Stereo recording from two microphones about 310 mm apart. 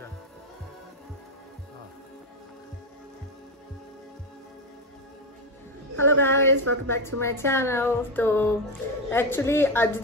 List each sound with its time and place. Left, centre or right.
5.9 s a woman's voice: right
6.9 s speech: centre